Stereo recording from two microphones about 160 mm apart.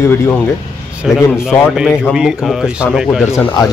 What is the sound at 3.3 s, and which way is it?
Speech, 15° left (ahead or behind).